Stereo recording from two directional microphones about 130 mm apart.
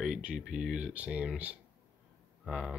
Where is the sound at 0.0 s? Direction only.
5° right (ahead or behind).